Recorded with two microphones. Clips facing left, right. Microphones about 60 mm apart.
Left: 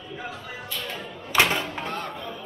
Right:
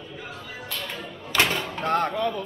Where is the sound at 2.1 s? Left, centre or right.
Right.